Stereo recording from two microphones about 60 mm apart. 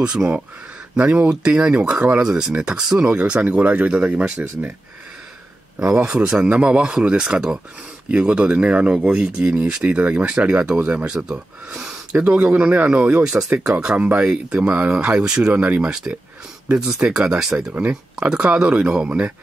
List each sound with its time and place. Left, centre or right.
0.0 s speech: centre
4.4 s speech: right
5.8 s speech: centre
11.1 s speech: centre
15.5 s speech: right
15.8 s speech: centre